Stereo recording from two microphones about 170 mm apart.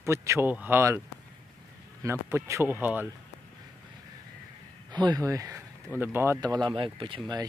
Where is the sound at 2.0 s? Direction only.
15° right (ahead or behind).